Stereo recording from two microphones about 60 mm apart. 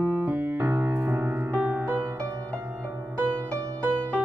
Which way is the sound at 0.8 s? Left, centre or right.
Centre.